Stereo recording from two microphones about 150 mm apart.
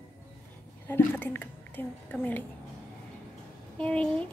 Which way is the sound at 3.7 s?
5° left (ahead or behind).